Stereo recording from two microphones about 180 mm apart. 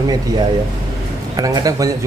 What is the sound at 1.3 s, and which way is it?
Speech, 20° right (ahead or behind).